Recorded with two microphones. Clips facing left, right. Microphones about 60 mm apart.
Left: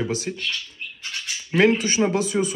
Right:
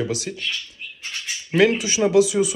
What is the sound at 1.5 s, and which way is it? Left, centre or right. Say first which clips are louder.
Speech: even; left.